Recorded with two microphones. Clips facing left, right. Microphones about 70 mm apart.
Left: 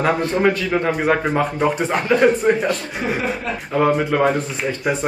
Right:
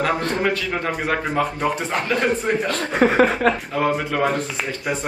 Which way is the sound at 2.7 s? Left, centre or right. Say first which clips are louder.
Right 4 dB; right.